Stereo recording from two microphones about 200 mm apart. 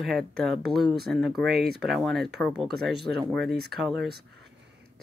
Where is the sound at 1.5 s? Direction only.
55° right (ahead or behind).